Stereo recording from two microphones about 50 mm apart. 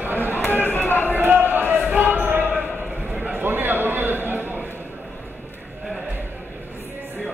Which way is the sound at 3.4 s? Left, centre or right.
Right.